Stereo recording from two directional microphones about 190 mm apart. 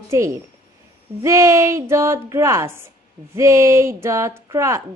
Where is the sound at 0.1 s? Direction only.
15° right (ahead or behind).